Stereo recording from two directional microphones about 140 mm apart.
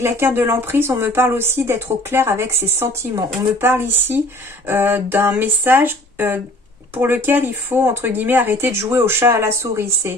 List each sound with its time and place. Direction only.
0.0 s speech: 15° right (ahead or behind)